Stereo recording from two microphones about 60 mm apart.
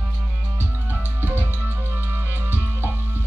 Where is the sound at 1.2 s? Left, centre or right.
Right.